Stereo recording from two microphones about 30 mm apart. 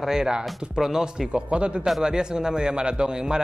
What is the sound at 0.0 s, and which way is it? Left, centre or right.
A man's voice, centre.